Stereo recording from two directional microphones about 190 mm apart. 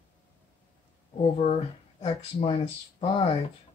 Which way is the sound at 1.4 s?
30° left (ahead or behind).